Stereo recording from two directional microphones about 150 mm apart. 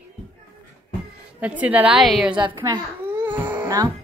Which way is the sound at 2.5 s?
20° right (ahead or behind).